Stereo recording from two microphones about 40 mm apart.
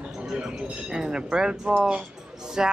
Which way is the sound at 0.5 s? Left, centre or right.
Right.